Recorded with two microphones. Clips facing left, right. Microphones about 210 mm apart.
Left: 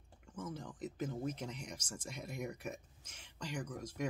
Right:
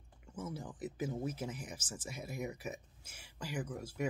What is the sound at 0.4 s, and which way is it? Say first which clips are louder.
Speech: right 1 dB; 5° right (ahead or behind).